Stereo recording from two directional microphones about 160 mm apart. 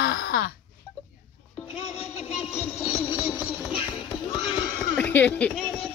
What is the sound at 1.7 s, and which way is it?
Music, 40° left (ahead or behind).